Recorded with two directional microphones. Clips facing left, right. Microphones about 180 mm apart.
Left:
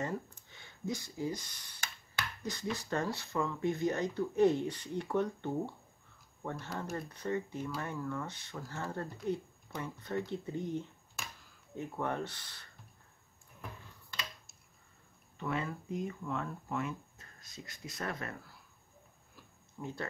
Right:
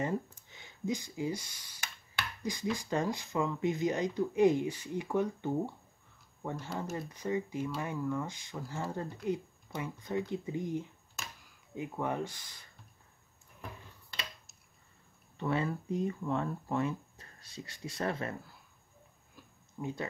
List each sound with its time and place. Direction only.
0.0 s speech: 20° right (ahead or behind)
15.3 s speech: 30° right (ahead or behind)
19.8 s speech: 15° right (ahead or behind)